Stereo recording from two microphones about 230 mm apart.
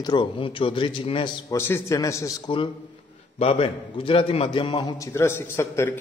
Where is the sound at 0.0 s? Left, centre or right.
Centre.